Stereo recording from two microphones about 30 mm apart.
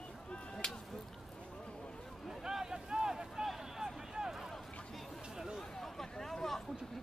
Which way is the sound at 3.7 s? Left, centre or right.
Centre.